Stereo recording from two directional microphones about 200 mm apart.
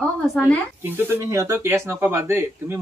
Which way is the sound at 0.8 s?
10° right (ahead or behind).